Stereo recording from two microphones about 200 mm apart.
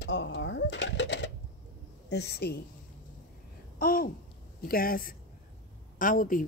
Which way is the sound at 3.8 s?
45° left (ahead or behind).